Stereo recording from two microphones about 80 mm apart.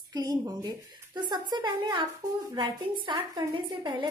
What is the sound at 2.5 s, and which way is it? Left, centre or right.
A woman's voice, right.